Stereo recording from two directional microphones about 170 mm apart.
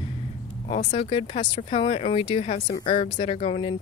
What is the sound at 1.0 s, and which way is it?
Speech, 30° left (ahead or behind).